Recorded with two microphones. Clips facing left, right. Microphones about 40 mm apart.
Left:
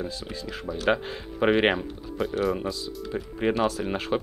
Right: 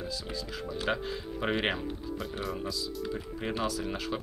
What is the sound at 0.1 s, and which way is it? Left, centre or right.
Speech, left.